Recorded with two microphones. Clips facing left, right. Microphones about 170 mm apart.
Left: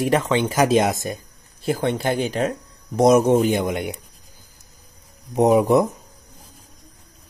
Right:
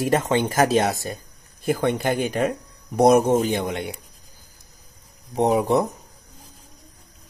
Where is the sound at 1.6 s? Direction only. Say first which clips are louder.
Even; 50° right (ahead or behind).